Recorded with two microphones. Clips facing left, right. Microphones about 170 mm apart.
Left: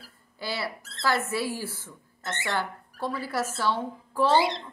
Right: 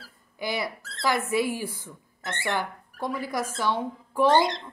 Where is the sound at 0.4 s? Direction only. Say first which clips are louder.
Right 3 dB; 15° right (ahead or behind).